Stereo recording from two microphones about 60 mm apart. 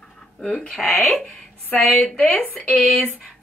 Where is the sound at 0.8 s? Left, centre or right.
Centre.